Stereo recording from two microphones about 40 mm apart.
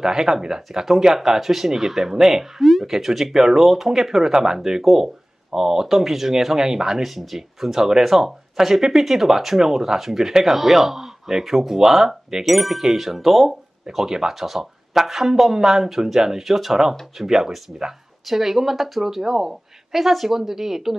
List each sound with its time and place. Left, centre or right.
0.0 s speech: centre
7.0 s speech: centre
13.9 s speech: centre